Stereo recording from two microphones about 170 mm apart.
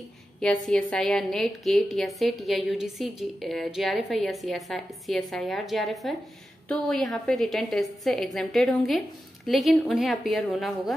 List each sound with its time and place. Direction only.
0.4 s a woman's voice: 5° left (ahead or behind)